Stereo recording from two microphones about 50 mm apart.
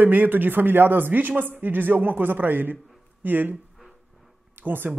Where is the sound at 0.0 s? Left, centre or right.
Right.